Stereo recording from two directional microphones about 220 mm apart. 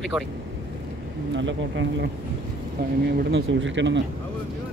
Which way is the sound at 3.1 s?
55° right (ahead or behind).